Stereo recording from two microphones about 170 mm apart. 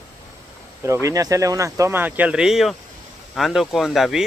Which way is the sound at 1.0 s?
20° right (ahead or behind).